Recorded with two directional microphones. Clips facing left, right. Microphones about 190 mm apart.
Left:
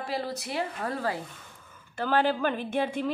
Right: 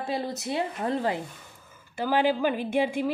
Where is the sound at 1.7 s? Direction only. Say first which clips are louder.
Right 1 dB; 10° right (ahead or behind).